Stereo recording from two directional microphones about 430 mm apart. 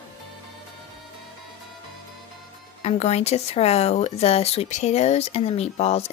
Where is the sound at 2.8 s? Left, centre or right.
Centre.